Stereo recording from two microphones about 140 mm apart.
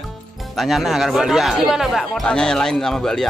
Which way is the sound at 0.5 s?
Centre (ahead or behind).